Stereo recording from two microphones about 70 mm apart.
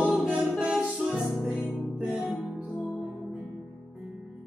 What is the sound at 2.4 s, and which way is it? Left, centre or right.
Music, centre.